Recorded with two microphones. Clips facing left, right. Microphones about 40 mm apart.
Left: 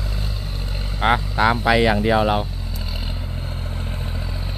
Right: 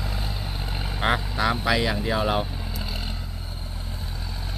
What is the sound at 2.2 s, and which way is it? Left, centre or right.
Speech, centre.